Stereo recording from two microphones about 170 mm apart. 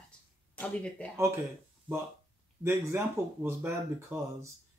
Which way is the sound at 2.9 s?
15° right (ahead or behind).